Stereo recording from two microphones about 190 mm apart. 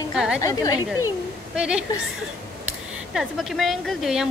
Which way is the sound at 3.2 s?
Centre (ahead or behind).